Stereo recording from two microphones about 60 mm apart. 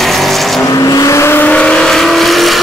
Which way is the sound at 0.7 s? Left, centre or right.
Left.